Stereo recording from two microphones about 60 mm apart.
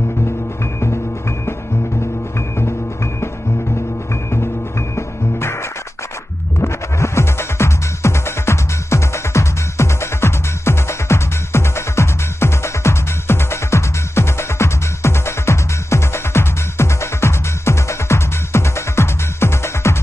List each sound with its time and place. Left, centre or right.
4.1 s music: left